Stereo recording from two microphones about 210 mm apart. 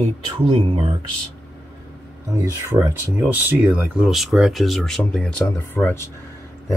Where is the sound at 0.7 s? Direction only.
25° right (ahead or behind).